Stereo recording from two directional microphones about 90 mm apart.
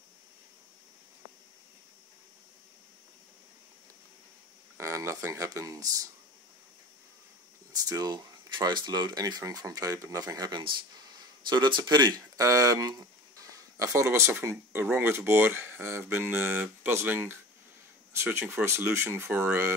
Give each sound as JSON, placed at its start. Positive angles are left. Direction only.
{"t": 4.7, "sound": "speech", "side_deg": -35}
{"t": 7.7, "sound": "speech", "side_deg": -45}
{"t": 11.1, "sound": "speech", "side_deg": -55}